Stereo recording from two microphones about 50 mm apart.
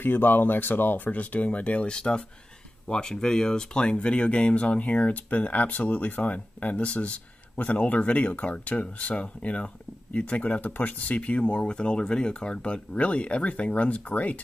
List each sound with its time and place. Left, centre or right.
0.0 s speech: left